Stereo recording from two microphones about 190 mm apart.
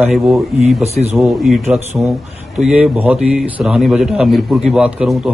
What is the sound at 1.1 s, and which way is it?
A man's voice, centre (ahead or behind).